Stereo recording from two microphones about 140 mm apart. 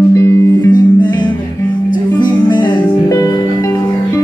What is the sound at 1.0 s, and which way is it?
Music, 30° left (ahead or behind).